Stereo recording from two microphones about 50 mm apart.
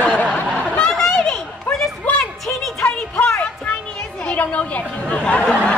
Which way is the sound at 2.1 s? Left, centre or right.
Left.